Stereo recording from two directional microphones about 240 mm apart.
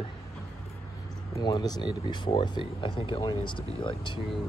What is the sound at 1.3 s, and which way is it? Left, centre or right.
Speech, centre.